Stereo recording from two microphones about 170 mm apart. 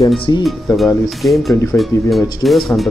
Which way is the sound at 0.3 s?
25° left (ahead or behind).